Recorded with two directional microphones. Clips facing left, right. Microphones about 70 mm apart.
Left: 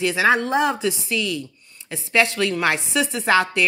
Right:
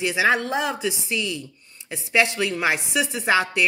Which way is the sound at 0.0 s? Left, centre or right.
Centre.